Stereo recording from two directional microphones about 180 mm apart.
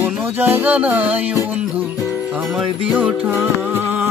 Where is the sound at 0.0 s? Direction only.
10° right (ahead or behind).